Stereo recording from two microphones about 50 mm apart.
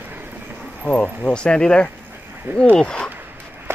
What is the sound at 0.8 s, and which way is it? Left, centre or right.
Speech, left.